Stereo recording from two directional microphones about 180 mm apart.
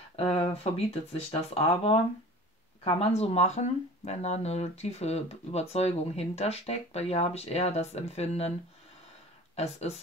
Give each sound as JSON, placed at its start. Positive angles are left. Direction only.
{"t": 0.1, "sound": "speech", "side_deg": 35}
{"t": 9.6, "sound": "speech", "side_deg": 35}